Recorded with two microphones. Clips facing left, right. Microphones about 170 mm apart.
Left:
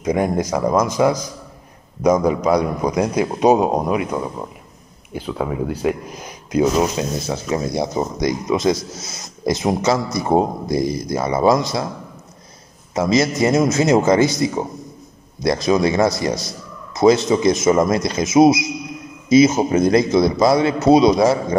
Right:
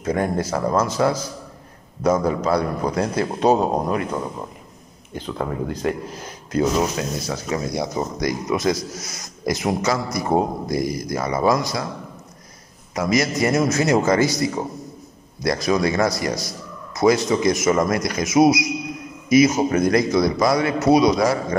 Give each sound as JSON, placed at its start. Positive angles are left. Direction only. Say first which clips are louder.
{"t": 0.0, "sound": "a man's voice", "louder": "left 3 dB", "side_deg": 15}
{"t": 12.9, "sound": "speech", "louder": "left 3 dB", "side_deg": 25}